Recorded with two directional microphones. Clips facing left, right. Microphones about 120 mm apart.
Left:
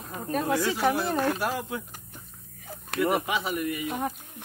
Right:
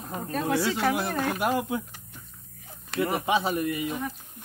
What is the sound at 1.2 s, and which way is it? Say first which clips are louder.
Speech: right 2 dB; 15° right (ahead or behind).